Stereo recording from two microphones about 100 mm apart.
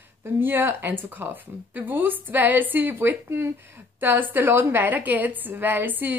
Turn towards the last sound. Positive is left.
turn(degrees=-20)  # may be behind; listen again after turning